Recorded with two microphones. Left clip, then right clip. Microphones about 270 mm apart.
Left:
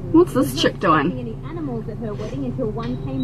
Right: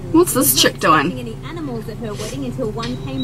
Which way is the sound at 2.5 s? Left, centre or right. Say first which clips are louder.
Right 2 dB; left.